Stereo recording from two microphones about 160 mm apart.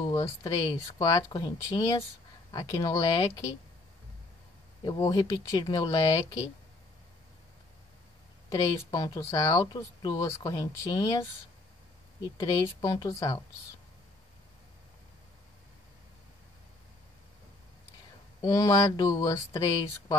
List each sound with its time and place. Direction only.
0.1 s speech: 20° left (ahead or behind)
2.5 s speech: 25° left (ahead or behind)
4.8 s speech: 25° left (ahead or behind)
8.5 s speech: 25° left (ahead or behind)
12.4 s speech: 30° left (ahead or behind)
18.4 s speech: 20° left (ahead or behind)